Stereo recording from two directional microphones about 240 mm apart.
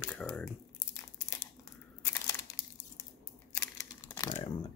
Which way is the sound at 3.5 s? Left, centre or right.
Centre.